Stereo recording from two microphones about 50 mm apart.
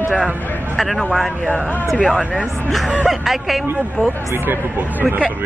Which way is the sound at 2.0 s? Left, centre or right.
Centre.